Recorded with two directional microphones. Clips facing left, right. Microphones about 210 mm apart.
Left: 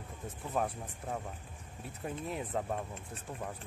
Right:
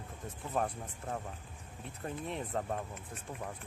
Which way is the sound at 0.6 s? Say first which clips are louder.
Even; 5° left (ahead or behind).